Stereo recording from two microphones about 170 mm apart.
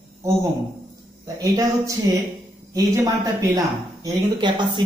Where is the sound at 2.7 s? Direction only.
20° right (ahead or behind).